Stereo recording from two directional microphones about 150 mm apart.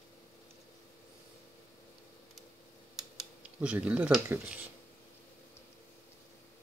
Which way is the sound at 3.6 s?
10° right (ahead or behind).